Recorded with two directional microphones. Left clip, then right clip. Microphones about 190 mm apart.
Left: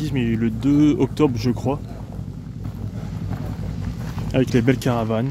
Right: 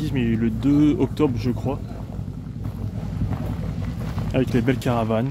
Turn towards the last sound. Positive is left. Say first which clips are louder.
# even
turn(degrees=15)  # may be behind; listen again after turning